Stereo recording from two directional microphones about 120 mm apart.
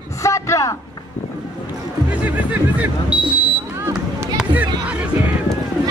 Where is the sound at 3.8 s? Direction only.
20° right (ahead or behind).